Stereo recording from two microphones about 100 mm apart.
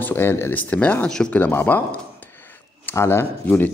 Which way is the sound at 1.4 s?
20° left (ahead or behind).